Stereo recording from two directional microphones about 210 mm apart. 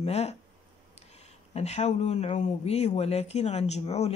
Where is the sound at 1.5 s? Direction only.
30° left (ahead or behind).